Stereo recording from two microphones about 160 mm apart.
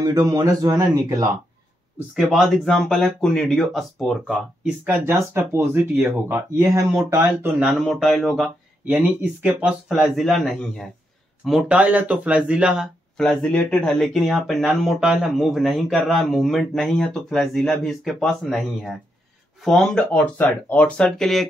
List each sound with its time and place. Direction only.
0.0 s a man's voice: 20° right (ahead or behind)
2.0 s a man's voice: 5° right (ahead or behind)
4.6 s speech: 15° right (ahead or behind)
7.8 s speech: centre (ahead or behind)
8.9 s a man's voice: 10° right (ahead or behind)